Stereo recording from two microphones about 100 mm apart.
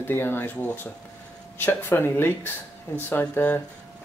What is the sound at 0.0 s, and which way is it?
Speech, 20° left (ahead or behind).